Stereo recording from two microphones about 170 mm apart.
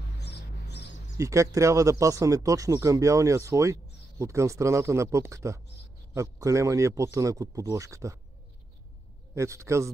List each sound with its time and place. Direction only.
0.2 s music: 75° left (ahead or behind)
1.1 s speech: 20° right (ahead or behind)
9.3 s speech: 15° right (ahead or behind)